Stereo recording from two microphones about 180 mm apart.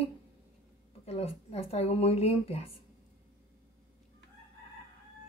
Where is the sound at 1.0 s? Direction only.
35° left (ahead or behind).